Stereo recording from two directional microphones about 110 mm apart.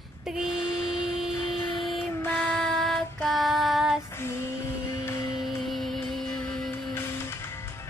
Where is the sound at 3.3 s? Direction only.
Centre (ahead or behind).